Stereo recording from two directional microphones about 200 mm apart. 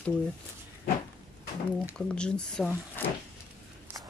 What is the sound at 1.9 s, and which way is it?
Speech, 5° left (ahead or behind).